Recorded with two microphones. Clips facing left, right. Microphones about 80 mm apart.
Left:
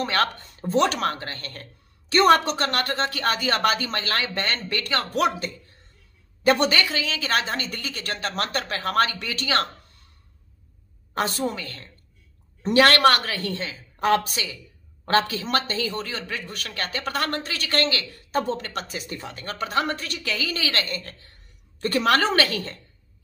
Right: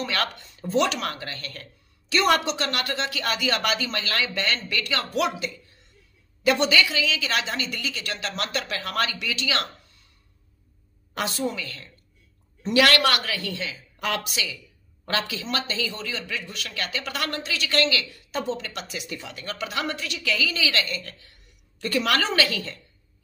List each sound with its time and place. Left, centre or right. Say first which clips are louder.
0.0 s speech: left 4 dB; left
11.1 s speech: left 2 dB; left